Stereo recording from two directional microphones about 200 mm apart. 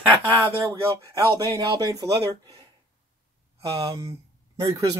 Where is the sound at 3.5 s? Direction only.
15° right (ahead or behind).